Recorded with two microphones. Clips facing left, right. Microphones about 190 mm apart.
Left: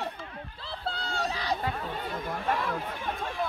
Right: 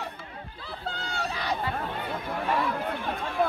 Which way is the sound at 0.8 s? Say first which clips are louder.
Left 1 dB; 35° left (ahead or behind).